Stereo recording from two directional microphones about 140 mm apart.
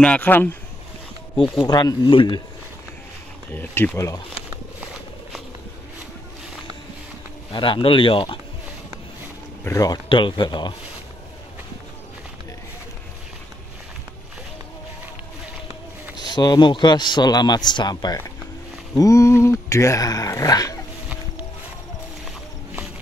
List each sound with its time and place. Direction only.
0.0 s speech: 10° left (ahead or behind)
1.6 s speech: 30° left (ahead or behind)
3.5 s speech: 15° left (ahead or behind)
7.5 s speech: 35° left (ahead or behind)
9.7 s speech: 25° left (ahead or behind)
10.0 s speech: 35° left (ahead or behind)
16.3 s speech: 30° left (ahead or behind)